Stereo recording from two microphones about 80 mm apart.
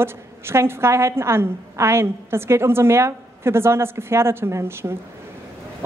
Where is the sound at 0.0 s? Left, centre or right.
Right.